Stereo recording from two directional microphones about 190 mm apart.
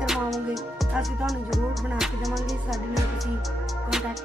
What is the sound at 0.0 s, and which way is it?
Music, centre (ahead or behind).